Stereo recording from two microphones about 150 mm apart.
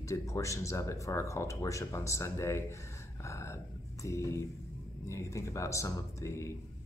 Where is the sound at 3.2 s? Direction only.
20° left (ahead or behind).